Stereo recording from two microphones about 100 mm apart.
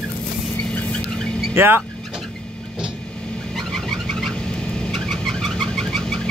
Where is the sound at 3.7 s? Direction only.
5° left (ahead or behind).